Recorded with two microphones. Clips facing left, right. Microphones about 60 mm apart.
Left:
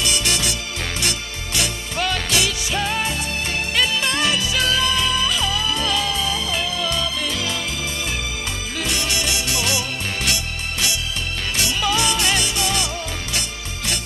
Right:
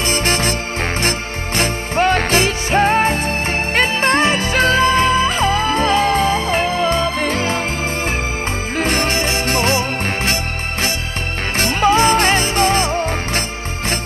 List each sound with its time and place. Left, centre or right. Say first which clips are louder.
0.0 s music: right 5 dB; right
8.7 s music: right 7 dB; right